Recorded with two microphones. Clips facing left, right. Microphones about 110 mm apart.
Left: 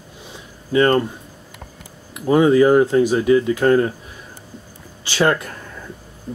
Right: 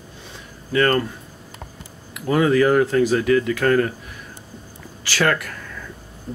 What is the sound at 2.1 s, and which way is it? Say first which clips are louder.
Speech: left 4 dB; 25° left (ahead or behind).